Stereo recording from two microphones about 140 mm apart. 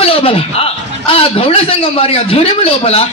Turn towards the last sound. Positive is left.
turn(degrees=45)  # may be behind; listen again after turning